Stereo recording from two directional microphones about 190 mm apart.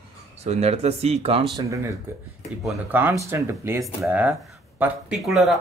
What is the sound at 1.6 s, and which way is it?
Speech, 15° right (ahead or behind).